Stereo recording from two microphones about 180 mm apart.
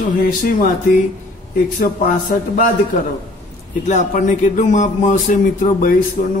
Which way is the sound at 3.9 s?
40° left (ahead or behind).